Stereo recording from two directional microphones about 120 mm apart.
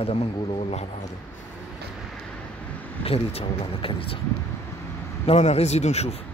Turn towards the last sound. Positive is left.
turn(degrees=65)  # may be behind; listen again after turning